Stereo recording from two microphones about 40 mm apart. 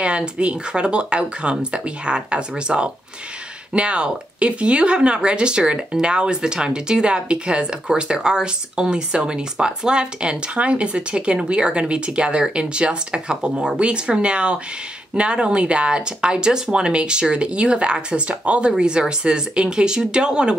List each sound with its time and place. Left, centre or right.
0.0 s speech: right